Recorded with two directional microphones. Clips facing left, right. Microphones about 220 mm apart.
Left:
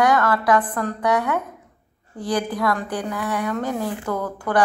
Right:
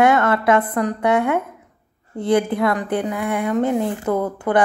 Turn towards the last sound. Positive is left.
turn(degrees=-20)  # may be behind; listen again after turning